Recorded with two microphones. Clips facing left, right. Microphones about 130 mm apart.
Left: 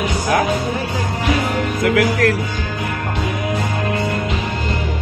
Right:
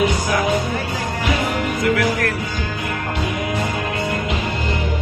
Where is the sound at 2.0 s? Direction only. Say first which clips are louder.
Left 4 dB; 90° left.